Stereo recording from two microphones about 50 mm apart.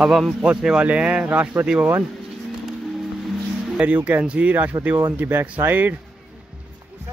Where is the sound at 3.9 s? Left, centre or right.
Right.